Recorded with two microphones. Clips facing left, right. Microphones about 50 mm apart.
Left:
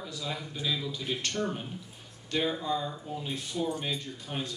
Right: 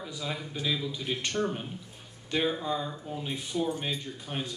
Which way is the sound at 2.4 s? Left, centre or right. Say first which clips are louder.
Even; centre.